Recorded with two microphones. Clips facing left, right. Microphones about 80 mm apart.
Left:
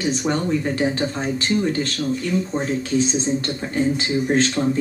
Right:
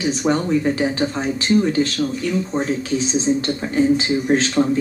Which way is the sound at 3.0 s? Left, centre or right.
Left.